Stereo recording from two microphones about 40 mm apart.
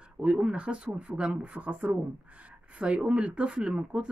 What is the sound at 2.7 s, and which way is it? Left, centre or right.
Speech, right.